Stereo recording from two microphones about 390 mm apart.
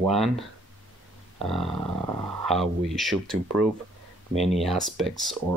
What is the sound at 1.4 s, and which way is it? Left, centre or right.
Speech, centre.